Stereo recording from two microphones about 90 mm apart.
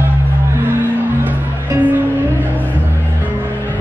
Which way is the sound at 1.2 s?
20° right (ahead or behind).